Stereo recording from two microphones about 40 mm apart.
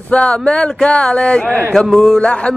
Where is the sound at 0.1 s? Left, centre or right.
Left.